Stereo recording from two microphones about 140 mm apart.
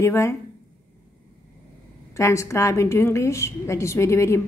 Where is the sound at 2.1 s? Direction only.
20° left (ahead or behind).